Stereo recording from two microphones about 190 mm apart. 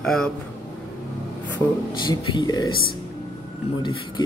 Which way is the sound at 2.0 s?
20° left (ahead or behind).